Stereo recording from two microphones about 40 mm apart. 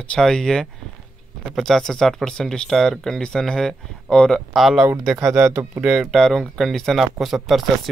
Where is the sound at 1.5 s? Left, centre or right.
Centre.